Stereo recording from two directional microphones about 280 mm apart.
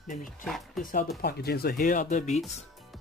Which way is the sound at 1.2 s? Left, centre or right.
Left.